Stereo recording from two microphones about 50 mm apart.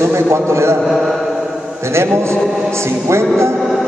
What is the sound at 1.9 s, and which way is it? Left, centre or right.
A man's voice, right.